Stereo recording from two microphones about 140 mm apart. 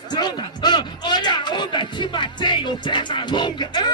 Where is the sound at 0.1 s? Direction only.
30° left (ahead or behind).